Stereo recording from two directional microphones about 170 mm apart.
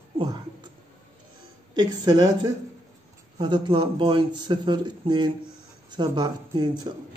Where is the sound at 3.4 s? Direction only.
25° right (ahead or behind).